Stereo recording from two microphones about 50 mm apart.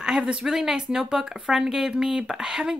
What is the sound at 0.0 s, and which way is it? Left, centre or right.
Speech, centre.